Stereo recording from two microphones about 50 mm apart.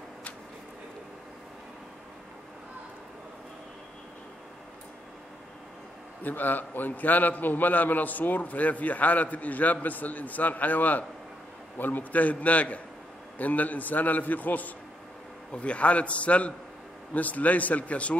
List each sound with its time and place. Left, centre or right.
6.2 s a man's voice: left